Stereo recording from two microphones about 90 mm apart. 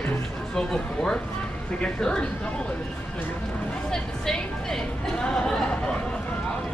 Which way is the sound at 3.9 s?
5° left (ahead or behind).